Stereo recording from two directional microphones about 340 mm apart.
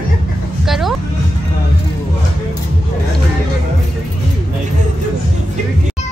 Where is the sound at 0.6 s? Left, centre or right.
Centre.